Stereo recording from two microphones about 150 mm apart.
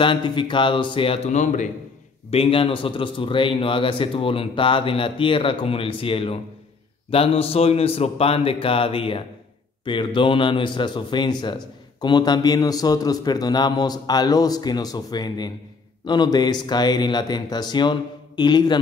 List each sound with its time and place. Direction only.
0.0 s a man's voice: 30° left (ahead or behind); by 1.7 s 55° left (ahead or behind)
2.3 s a man's voice: 40° left (ahead or behind)